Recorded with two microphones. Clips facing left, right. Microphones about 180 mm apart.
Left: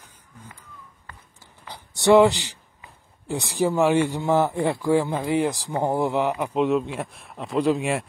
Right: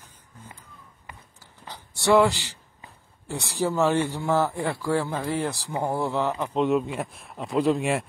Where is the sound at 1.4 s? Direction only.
15° left (ahead or behind).